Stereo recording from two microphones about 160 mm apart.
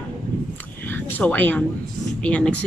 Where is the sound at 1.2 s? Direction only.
10° left (ahead or behind).